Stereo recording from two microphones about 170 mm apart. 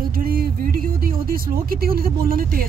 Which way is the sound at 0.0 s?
55° right (ahead or behind).